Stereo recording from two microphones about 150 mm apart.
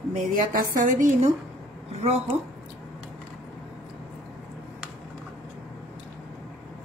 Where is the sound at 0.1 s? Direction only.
65° right (ahead or behind).